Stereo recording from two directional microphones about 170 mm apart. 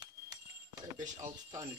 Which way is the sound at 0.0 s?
25° right (ahead or behind).